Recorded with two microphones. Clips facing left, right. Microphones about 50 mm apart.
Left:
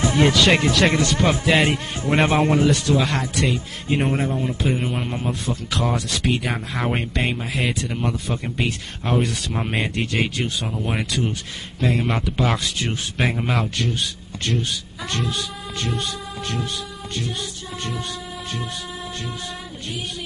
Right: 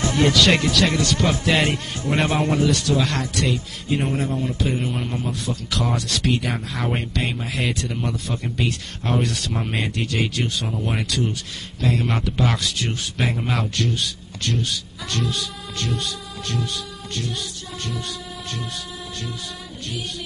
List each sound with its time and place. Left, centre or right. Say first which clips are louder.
0.0 s a sound: left 2 dB; centre
0.6 s speech: left 2 dB; left
1.4 s speech: left 2 dB; centre
2.0 s speech: left 3 dB; centre
4.3 s speech: left 1 dB; centre
7.3 s speech: left 1 dB; centre
9.1 s speech: left 1 dB; centre; by 10.4 s left
10.4 s speech: even; centre
12.1 s speech: left 1 dB; centre
12.5 s speech: even; left
14.6 s speech: even; left
17.1 s speech: even; centre